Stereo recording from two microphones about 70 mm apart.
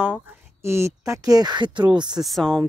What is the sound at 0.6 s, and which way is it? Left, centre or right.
Speech, right.